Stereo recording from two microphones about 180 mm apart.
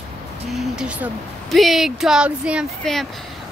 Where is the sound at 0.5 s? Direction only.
5° right (ahead or behind).